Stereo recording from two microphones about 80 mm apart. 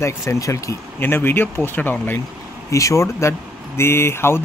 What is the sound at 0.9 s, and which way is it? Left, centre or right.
Speech, left.